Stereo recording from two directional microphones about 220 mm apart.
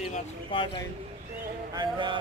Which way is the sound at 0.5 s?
25° left (ahead or behind).